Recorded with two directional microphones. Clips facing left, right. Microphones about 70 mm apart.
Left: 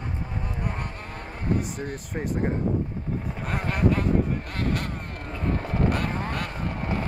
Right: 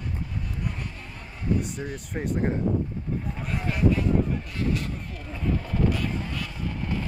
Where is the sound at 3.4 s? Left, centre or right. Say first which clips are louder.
Even; left.